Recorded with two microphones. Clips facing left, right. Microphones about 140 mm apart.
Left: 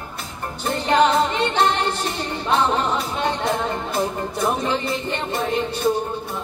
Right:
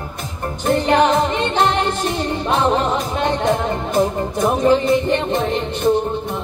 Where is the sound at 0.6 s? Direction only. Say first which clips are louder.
Right 3 dB; 15° right (ahead or behind).